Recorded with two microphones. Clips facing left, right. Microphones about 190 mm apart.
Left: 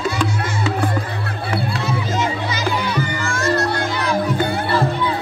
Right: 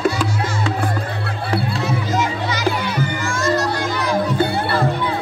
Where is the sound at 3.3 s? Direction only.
60° left (ahead or behind).